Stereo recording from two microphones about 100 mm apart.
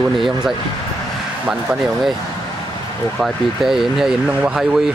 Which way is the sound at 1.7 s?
Centre (ahead or behind).